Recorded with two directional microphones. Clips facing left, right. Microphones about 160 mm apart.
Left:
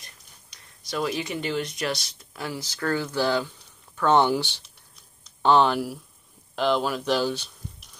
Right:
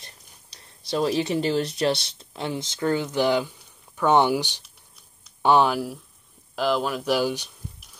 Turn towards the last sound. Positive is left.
turn(degrees=-10)  # may be behind; listen again after turning